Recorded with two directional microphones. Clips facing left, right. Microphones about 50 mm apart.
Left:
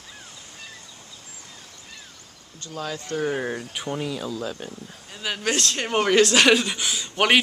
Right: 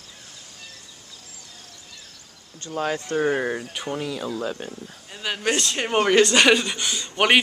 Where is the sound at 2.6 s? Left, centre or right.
Right.